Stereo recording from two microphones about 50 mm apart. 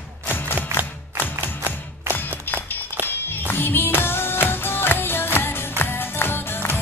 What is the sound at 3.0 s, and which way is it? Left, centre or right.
Music, left.